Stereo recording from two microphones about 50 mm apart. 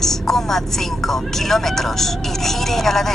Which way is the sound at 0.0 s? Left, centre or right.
Centre.